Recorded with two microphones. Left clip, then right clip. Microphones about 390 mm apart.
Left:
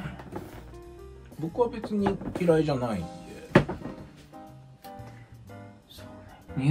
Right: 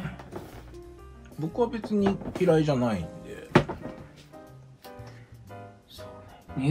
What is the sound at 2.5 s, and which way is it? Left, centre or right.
Speech, right.